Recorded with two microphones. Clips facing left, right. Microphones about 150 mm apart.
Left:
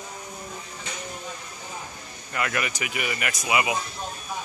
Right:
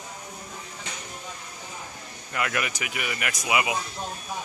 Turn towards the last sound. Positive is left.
turn(degrees=-5)  # may be behind; listen again after turning